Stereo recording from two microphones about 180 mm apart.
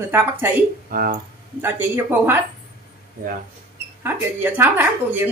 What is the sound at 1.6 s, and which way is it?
Speech, 10° right (ahead or behind).